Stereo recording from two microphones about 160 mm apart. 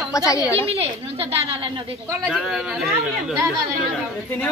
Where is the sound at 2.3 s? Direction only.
Centre (ahead or behind).